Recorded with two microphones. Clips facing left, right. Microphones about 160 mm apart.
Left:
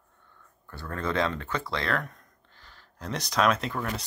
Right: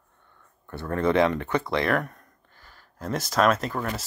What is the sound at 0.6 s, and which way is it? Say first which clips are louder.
Speech: right 8 dB; 20° right (ahead or behind).